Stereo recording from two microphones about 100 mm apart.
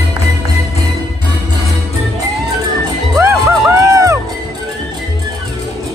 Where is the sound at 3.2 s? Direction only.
25° right (ahead or behind).